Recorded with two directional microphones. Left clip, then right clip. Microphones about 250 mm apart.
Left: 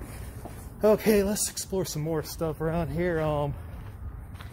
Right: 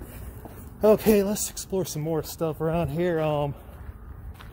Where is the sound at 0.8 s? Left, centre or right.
Centre.